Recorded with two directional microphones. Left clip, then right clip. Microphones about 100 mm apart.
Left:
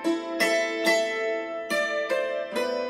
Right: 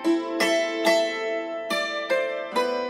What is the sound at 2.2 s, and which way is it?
Music, 15° right (ahead or behind).